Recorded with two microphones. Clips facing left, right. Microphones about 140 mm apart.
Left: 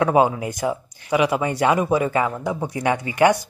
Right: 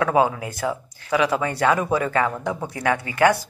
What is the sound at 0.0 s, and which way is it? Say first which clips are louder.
Speech: left 2 dB; 20° left (ahead or behind).